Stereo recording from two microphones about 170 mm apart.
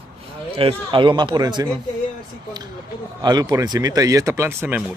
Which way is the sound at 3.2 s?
25° right (ahead or behind).